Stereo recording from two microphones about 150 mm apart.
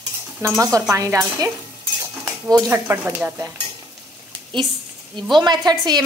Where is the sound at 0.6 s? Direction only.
20° right (ahead or behind).